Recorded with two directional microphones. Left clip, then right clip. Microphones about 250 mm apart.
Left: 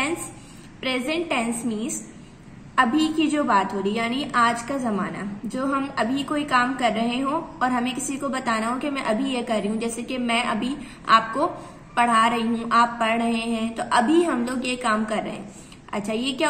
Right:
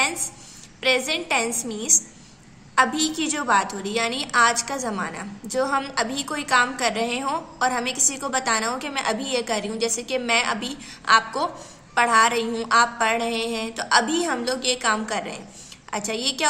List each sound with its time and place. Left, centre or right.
0.7 s a woman's voice: right